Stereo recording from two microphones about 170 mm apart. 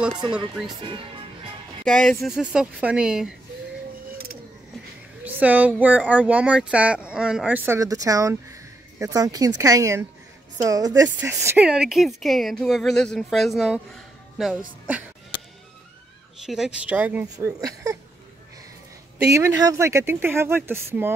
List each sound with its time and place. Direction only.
0.8 s speech: 30° right (ahead or behind)
1.9 s speech: 5° left (ahead or behind)
5.2 s speech: 10° right (ahead or behind)
16.4 s speech: 5° right (ahead or behind)
17.5 s speech: 20° right (ahead or behind)
19.2 s speech: 15° right (ahead or behind)